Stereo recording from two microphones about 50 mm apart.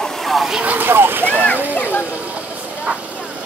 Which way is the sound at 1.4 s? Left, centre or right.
Left.